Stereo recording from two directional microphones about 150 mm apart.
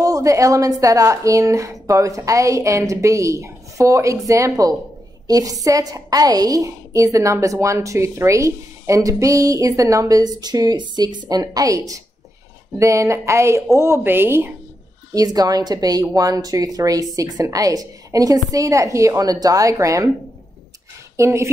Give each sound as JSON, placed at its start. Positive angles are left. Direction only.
{"t": 0.0, "sound": "a woman's voice", "side_deg": -20}
{"t": 15.1, "sound": "a woman's voice", "side_deg": -25}
{"t": 21.2, "sound": "a woman's voice", "side_deg": -20}